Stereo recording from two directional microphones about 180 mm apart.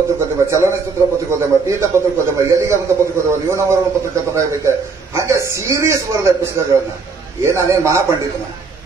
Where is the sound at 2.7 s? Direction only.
15° right (ahead or behind).